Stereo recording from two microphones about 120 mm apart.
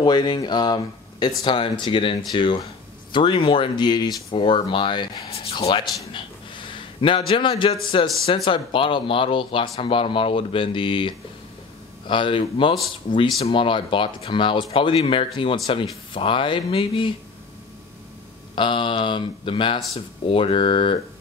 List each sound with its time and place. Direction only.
0.0 s a man's voice: 35° left (ahead or behind)
18.5 s speech: 45° left (ahead or behind)